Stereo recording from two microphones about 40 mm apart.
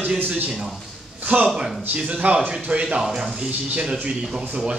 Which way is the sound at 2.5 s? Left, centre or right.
Right.